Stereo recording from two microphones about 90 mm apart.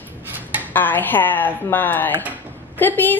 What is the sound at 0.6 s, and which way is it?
Speech, 20° left (ahead or behind).